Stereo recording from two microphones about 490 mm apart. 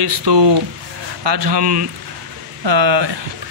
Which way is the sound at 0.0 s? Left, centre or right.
Right.